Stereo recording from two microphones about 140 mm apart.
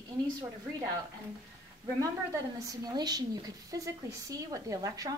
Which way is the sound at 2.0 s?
25° right (ahead or behind).